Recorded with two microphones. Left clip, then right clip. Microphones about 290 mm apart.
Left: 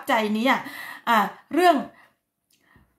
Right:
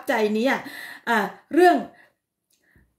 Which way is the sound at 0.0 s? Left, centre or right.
Centre.